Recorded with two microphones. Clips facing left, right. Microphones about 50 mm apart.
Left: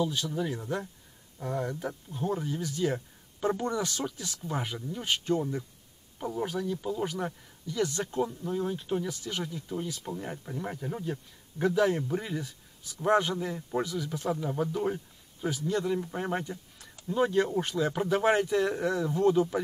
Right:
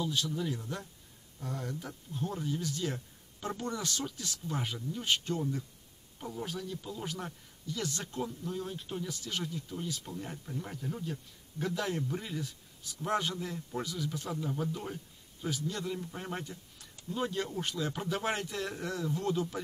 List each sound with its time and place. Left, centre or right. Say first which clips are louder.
0.0 s speech: left 4 dB; centre
0.3 s speech: left 4 dB; left
5.0 s speech: left 4 dB; left
6.4 s speech: left 8 dB; centre
8.6 s speech: left 8 dB; centre
8.9 s speech: left 3 dB; centre
13.9 s speech: left 5 dB; centre